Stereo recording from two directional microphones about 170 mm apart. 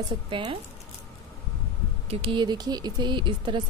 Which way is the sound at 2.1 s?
30° right (ahead or behind).